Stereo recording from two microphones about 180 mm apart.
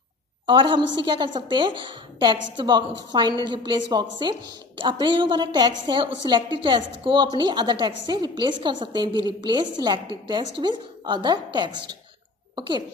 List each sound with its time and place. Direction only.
0.5 s a woman's voice: 25° right (ahead or behind)